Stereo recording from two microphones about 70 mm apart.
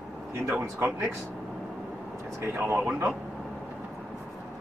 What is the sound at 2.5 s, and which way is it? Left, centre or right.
Speech, right.